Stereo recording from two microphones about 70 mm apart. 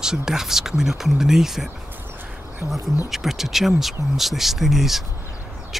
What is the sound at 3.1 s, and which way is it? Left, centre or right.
Speech, centre.